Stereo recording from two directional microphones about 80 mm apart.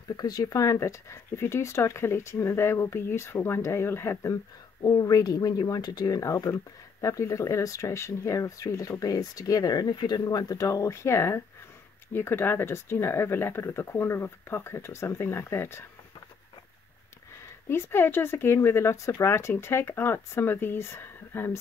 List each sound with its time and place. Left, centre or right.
0.2 s speech: left
4.8 s speech: left
17.6 s speech: left